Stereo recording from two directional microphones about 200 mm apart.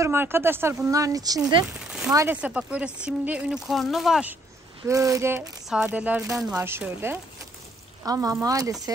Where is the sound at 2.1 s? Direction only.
10° right (ahead or behind).